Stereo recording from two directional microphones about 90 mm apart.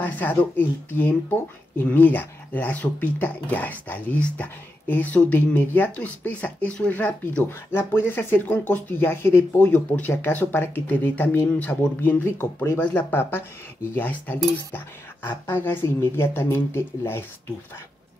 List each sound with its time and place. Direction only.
0.0 s speech: 20° left (ahead or behind)